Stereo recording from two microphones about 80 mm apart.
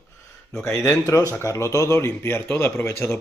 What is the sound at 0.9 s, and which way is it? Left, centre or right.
A man's voice, left.